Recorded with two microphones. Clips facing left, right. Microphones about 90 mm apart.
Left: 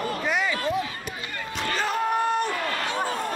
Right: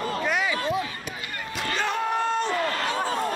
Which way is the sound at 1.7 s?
5° left (ahead or behind).